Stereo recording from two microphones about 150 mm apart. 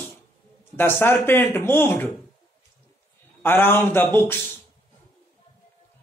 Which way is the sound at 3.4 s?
15° left (ahead or behind).